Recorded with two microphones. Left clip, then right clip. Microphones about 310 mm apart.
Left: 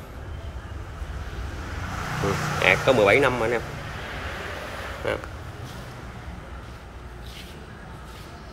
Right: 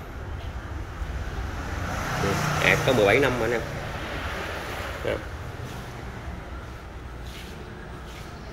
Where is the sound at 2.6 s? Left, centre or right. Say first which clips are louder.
Left 2 dB; centre.